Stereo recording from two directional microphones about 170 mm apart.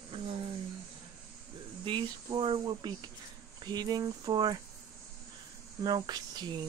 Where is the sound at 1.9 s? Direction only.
30° right (ahead or behind).